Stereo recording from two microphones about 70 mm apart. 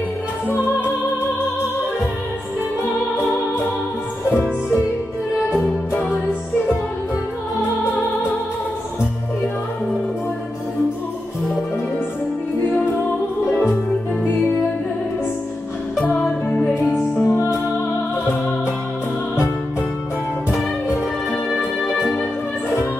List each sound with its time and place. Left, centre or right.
16.0 s music: left
16.9 s music: left